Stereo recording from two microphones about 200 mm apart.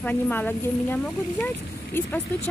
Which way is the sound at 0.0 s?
10° left (ahead or behind).